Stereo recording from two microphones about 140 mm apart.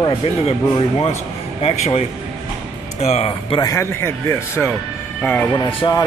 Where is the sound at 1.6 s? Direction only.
45° left (ahead or behind).